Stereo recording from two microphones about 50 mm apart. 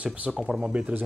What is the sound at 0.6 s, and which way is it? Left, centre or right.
Speech, right.